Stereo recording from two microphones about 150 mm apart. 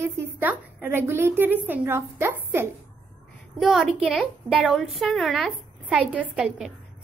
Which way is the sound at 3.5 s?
Centre (ahead or behind).